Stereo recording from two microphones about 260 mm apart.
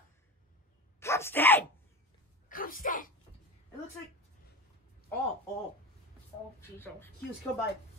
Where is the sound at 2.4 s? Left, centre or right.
Left.